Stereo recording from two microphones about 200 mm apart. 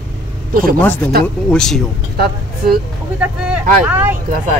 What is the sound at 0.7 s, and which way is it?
Speech, 10° left (ahead or behind).